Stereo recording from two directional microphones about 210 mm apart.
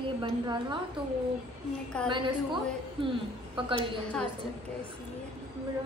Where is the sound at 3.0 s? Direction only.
25° right (ahead or behind).